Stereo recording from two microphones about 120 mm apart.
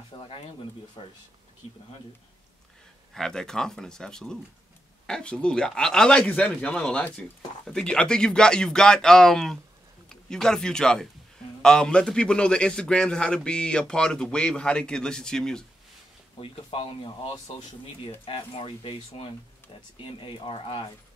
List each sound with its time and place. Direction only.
0.1 s speech: 50° left (ahead or behind)
3.2 s speech: 5° left (ahead or behind)
16.3 s speech: 50° left (ahead or behind)